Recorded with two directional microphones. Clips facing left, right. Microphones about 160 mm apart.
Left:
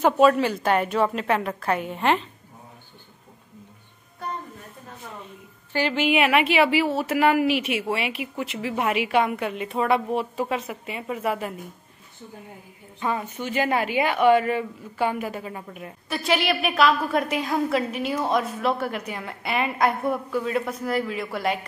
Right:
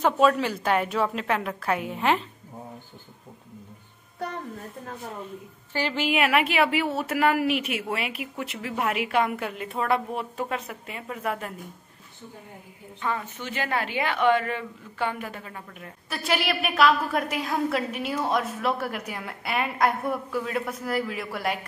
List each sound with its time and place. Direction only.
0.0 s a woman's voice: 5° left (ahead or behind)
6.1 s a woman's voice: centre (ahead or behind)
13.0 s a woman's voice: 15° left (ahead or behind)
16.1 s a woman's voice: centre (ahead or behind)